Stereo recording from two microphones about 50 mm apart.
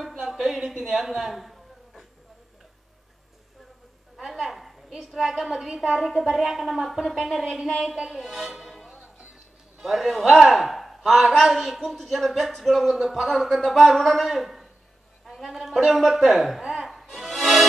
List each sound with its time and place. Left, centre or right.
0.2 s a sound: centre
4.2 s a woman's voice: centre
8.8 s music: centre
9.8 s a man's voice: centre
17.1 s music: centre